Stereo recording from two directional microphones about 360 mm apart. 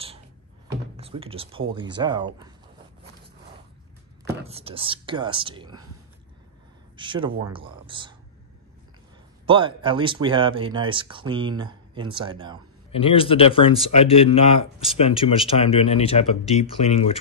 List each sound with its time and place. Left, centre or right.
0.7 s speech: centre
4.4 s speech: centre
7.0 s speech: centre
9.5 s speech: centre
12.9 s speech: centre